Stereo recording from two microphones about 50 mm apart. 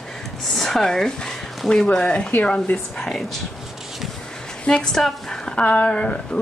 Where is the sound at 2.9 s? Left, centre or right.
Centre.